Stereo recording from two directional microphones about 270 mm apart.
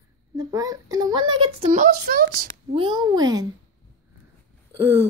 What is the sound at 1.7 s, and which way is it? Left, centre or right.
Speech, right.